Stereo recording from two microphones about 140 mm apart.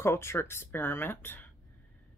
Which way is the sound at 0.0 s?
20° left (ahead or behind).